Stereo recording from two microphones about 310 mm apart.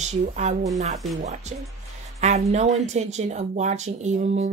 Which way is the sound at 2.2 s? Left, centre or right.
Right.